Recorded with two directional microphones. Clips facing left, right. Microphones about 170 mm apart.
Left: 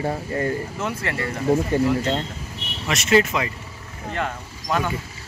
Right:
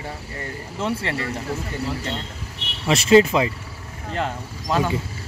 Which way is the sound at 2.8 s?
30° right (ahead or behind).